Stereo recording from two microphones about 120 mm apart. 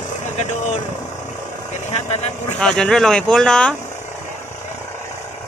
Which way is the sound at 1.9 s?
65° left (ahead or behind).